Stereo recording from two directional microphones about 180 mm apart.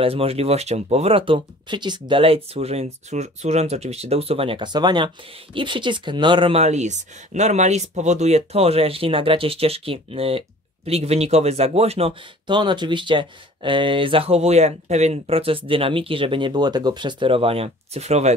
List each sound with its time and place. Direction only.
0.0 s speech: 30° right (ahead or behind)